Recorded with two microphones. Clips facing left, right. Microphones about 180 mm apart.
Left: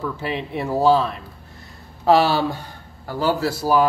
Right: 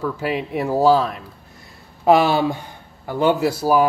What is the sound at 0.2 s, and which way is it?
Speech, 10° right (ahead or behind).